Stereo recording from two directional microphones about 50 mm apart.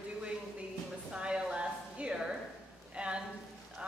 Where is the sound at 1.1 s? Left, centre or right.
Centre.